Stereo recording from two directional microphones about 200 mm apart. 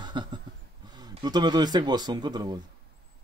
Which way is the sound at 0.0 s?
20° right (ahead or behind).